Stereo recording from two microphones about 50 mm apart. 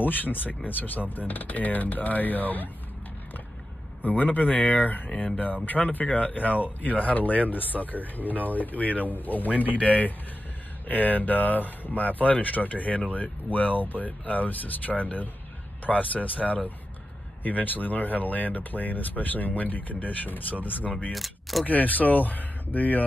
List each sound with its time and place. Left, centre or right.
0.0 s speech: left
4.0 s speech: left
21.1 s speech: centre
21.6 s speech: left